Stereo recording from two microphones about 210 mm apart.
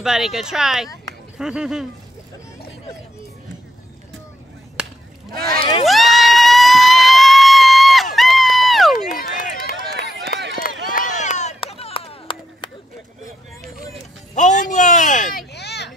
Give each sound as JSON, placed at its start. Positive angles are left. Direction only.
{"t": 0.0, "sound": "speech", "side_deg": 0}
{"t": 4.8, "sound": "chop", "side_deg": -5}
{"t": 5.3, "sound": "speech", "side_deg": -45}
{"t": 5.9, "sound": "a sound", "side_deg": 0}
{"t": 9.1, "sound": "run", "side_deg": 45}
{"t": 9.9, "sound": "run", "side_deg": -55}
{"t": 10.6, "sound": "run", "side_deg": 40}
{"t": 14.3, "sound": "a sound", "side_deg": 35}
{"t": 15.5, "sound": "a sound", "side_deg": 50}